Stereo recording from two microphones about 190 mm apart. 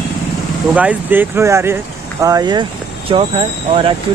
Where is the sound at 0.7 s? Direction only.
10° right (ahead or behind); by 3.9 s 30° right (ahead or behind).